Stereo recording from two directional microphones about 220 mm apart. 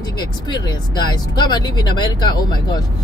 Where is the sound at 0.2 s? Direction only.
20° left (ahead or behind).